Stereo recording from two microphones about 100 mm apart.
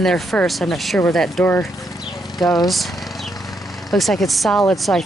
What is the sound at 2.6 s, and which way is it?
Speech, centre (ahead or behind).